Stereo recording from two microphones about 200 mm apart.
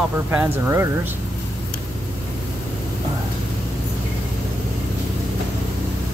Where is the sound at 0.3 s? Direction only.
10° right (ahead or behind).